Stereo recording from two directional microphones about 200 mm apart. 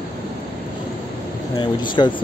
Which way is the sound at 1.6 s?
25° left (ahead or behind).